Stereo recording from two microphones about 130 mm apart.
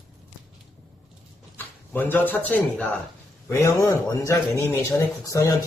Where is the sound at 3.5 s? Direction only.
20° left (ahead or behind).